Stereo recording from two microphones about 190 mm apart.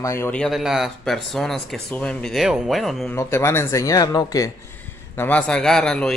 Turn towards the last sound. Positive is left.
turn(degrees=5)  # may be behind; listen again after turning